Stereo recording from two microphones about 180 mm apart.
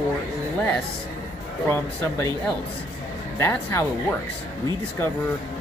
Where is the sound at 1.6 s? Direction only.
15° left (ahead or behind).